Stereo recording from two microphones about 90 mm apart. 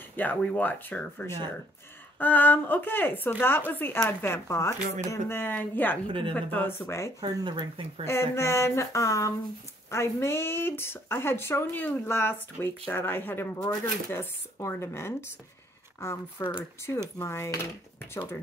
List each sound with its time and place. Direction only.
0.1 s speech: 20° left (ahead or behind)
0.4 s speech: 5° left (ahead or behind)
0.7 s speech: 20° left (ahead or behind)
6.8 s speech: 35° left (ahead or behind)
7.2 s speech: 65° right (ahead or behind)
8.0 s speech: 30° left (ahead or behind)